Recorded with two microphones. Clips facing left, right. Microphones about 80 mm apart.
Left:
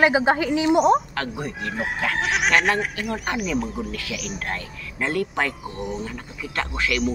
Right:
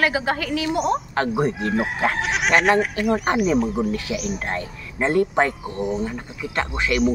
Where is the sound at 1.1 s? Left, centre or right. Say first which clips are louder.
Right 7 dB; right.